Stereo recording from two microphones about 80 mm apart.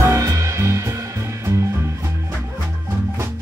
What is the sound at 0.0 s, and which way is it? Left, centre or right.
Music, right.